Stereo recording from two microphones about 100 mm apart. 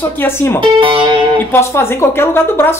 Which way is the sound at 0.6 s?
60° right (ahead or behind).